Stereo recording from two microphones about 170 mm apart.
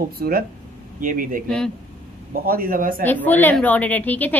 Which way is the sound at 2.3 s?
60° right (ahead or behind).